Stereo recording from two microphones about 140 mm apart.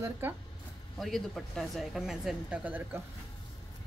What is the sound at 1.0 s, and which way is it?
Speech, centre (ahead or behind).